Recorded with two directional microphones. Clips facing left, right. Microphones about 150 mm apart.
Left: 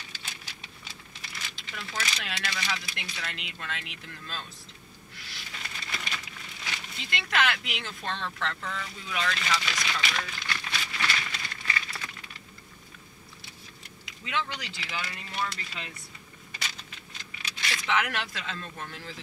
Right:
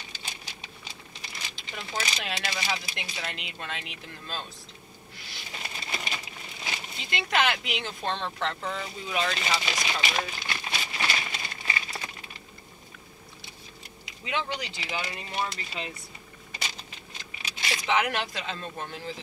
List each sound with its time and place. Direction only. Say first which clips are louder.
0.3 s a sound: right 3 dB; 25° right (ahead or behind)
1.7 s speech: right 2 dB; 25° right (ahead or behind)
5.4 s crumpling: right 3 dB; 25° right (ahead or behind)
7.8 s speech: right 3 dB; 30° right (ahead or behind)
14.3 s speech: right 2 dB; 25° right (ahead or behind)
16.5 s a sound: right 2 dB; 25° right (ahead or behind)
18.0 s speech: right 4 dB; 30° right (ahead or behind)